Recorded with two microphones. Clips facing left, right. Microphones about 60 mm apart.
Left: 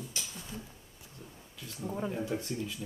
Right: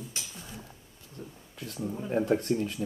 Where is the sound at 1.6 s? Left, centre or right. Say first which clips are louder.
Right 7 dB; right.